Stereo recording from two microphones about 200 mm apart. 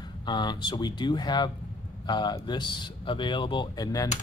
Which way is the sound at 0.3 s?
20° left (ahead or behind).